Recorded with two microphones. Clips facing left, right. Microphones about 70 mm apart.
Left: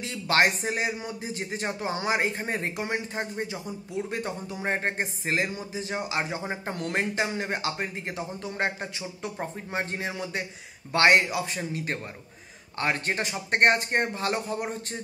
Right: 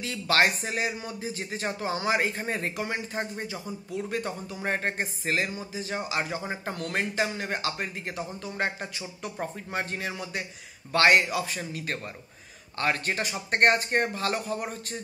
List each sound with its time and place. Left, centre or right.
0.0 s speech: left